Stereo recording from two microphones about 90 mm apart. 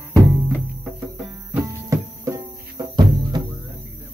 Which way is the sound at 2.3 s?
50° right (ahead or behind).